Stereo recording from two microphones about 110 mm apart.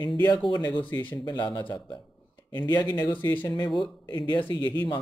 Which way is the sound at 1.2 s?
40° left (ahead or behind).